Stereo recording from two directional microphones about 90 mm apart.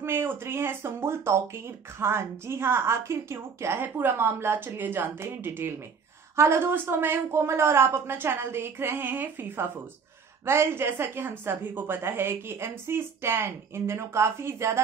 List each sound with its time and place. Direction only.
0.0 s a woman's voice: 25° right (ahead or behind)